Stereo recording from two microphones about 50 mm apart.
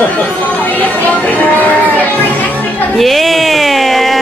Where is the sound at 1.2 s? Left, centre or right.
Left.